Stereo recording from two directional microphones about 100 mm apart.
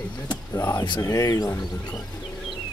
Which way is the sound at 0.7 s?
45° left (ahead or behind).